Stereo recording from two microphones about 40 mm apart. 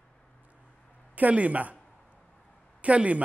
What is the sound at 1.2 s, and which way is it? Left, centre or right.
Speech, right.